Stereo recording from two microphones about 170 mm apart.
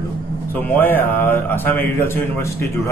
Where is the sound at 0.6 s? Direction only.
10° left (ahead or behind).